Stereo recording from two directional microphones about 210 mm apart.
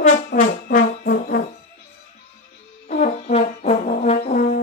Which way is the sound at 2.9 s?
30° left (ahead or behind).